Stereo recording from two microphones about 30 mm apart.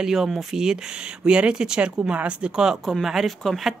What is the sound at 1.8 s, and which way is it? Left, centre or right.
Speech, right.